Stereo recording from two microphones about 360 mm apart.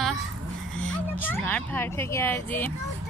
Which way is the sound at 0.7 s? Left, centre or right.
Centre.